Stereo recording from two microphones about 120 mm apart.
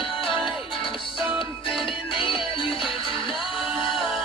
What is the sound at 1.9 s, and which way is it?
Music, 45° left (ahead or behind).